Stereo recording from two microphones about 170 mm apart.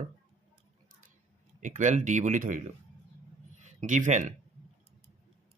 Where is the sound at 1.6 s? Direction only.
45° right (ahead or behind).